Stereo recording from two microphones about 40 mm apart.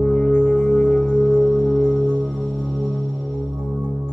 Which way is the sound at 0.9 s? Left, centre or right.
Left.